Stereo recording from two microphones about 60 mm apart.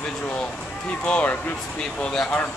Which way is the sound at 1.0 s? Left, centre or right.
Left.